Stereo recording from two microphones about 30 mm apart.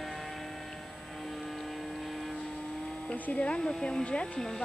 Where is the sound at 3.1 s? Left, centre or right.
Left.